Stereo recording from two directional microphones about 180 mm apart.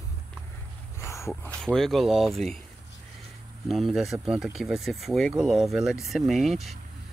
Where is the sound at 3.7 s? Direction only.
Centre (ahead or behind).